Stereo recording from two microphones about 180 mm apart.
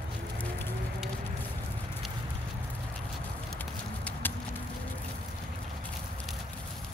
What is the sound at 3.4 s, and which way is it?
Clip-clop, 10° left (ahead or behind).